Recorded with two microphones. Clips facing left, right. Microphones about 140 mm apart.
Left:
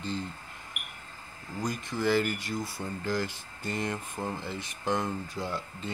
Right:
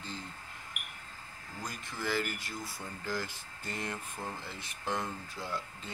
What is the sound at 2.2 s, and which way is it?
Speech, 75° left (ahead or behind).